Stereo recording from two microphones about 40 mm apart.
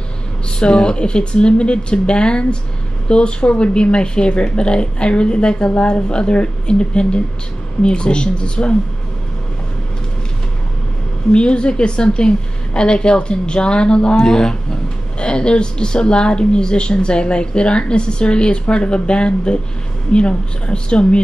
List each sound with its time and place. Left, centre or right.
0.5 s speech: left
11.3 s speech: left